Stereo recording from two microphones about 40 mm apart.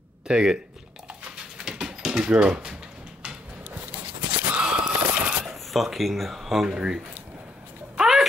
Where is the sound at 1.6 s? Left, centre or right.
Centre.